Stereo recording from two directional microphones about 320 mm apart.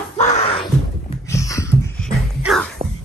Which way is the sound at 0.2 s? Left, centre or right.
Centre.